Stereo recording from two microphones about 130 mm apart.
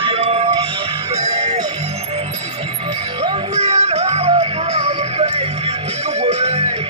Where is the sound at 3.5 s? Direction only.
55° right (ahead or behind).